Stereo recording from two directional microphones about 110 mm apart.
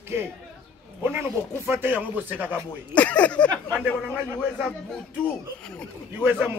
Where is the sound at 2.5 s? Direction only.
10° left (ahead or behind).